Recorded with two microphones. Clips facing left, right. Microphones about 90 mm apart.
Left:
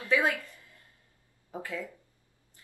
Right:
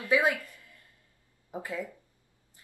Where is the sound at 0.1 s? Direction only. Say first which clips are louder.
Right 1 dB; 15° right (ahead or behind).